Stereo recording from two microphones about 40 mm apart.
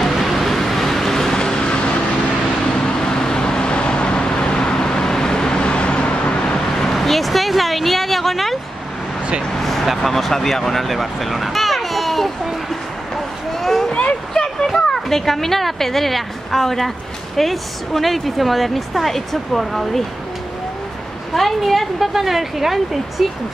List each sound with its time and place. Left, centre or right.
0.0 s vehicle: centre; by 6.6 s left
6.8 s vehicle: centre
10.0 s speech: centre
13.6 s a sound: centre
14.9 s a woman's voice: centre
21.4 s a woman's voice: centre